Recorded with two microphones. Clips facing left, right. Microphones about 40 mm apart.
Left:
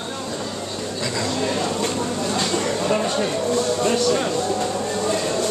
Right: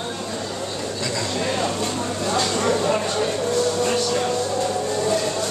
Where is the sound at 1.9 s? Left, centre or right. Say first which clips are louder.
Left 1 dB; centre.